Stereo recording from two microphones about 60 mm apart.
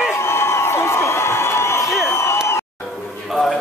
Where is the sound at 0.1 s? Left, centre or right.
Left.